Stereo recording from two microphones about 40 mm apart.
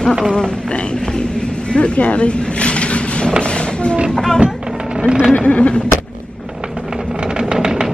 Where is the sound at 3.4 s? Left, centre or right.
Left.